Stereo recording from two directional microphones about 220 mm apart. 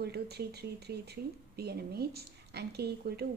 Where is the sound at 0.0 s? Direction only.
45° right (ahead or behind).